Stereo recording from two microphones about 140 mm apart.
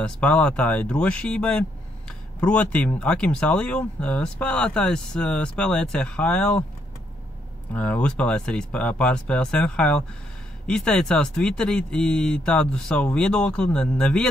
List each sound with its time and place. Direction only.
0.0 s speech: 5° left (ahead or behind)
7.7 s speech: 10° left (ahead or behind)